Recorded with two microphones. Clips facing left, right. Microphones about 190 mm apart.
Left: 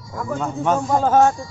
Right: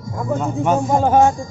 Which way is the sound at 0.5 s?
15° right (ahead or behind).